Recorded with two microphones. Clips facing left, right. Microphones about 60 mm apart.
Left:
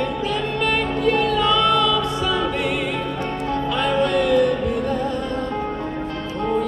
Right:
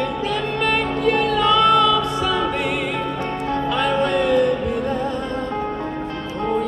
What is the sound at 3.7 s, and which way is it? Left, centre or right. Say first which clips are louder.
Music: even; right.